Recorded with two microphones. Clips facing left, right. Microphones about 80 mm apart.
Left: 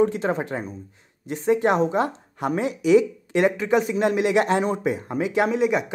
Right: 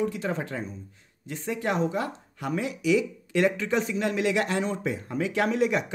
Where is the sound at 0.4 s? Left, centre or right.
Left.